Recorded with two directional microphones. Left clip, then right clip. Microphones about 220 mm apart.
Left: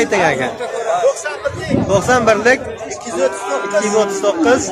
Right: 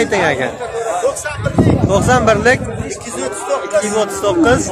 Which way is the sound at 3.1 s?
25° right (ahead or behind).